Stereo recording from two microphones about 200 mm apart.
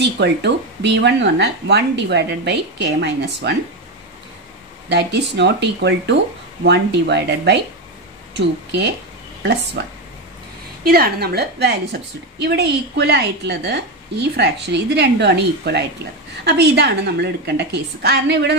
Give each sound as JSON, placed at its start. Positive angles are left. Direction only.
{"t": 0.0, "sound": "speech", "side_deg": -55}
{"t": 4.8, "sound": "speech", "side_deg": -60}
{"t": 10.8, "sound": "speech", "side_deg": -50}